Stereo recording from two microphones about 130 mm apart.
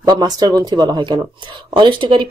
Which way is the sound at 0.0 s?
30° right (ahead or behind).